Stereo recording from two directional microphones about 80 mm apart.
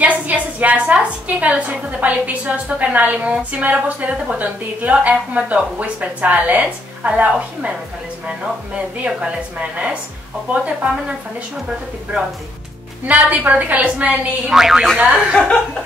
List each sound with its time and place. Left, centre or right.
0.0 s a woman's voice: centre
13.0 s a woman's voice: centre
14.5 s speech: centre
15.3 s chuckle: centre